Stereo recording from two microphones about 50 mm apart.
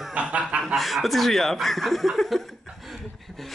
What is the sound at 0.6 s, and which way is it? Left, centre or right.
Speech, centre.